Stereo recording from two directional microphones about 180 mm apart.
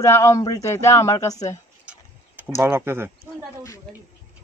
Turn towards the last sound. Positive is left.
turn(degrees=-15)  # may be behind; listen again after turning